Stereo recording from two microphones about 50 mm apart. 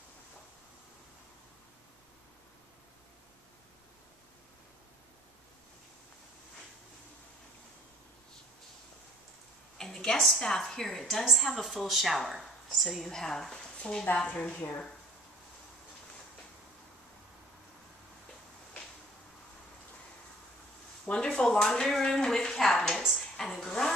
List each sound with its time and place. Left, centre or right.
9.8 s a woman's voice: centre
14.0 s a woman's voice: left
21.0 s a woman's voice: centre